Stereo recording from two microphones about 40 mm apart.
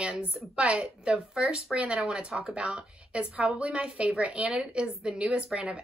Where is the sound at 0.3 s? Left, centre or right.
Right.